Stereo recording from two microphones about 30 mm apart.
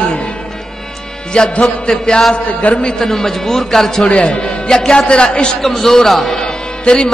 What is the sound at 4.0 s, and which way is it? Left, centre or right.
A man's voice, left.